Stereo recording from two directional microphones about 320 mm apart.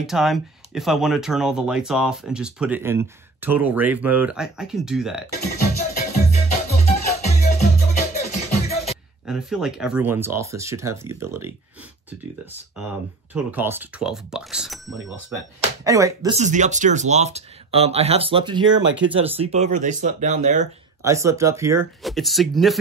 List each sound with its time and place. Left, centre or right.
0.0 s speech: centre
6.3 s music: centre
9.2 s speech: centre
13.3 s speech: centre
18.8 s speech: right
19.2 s speech: centre
21.0 s speech: centre